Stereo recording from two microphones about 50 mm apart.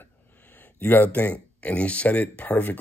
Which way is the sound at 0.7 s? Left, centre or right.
Left.